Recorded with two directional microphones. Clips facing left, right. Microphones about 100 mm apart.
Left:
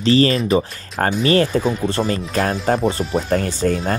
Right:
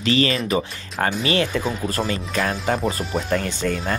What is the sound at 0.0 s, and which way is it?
Speech, 35° left (ahead or behind).